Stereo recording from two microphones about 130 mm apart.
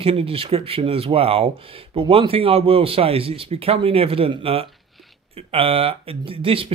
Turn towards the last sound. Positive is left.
turn(degrees=-45)  # may be behind; listen again after turning